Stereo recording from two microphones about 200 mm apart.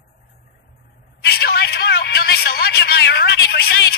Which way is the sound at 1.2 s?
55° left (ahead or behind).